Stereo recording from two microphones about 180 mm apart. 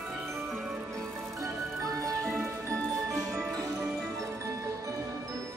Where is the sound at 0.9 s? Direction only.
15° right (ahead or behind).